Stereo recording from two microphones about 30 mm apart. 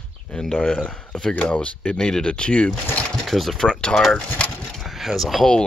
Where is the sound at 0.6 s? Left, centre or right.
Left.